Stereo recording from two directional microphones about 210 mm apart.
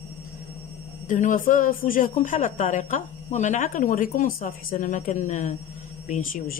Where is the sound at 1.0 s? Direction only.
40° left (ahead or behind).